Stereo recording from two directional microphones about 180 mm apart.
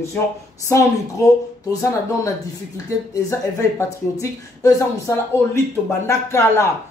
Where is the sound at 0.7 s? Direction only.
15° left (ahead or behind).